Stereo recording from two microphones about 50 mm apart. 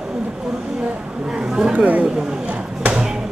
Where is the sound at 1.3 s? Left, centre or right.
Centre.